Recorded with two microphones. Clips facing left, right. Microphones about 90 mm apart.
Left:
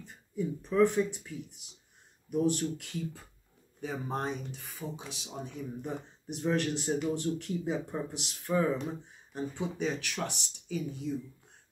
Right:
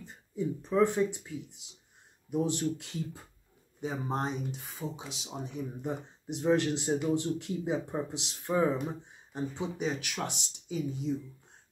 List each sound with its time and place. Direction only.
0.0 s speech: 20° right (ahead or behind)